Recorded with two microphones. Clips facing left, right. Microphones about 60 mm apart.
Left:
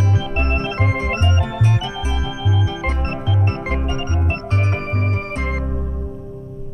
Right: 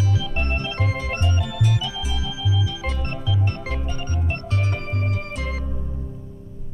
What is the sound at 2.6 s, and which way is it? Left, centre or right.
Organ, left.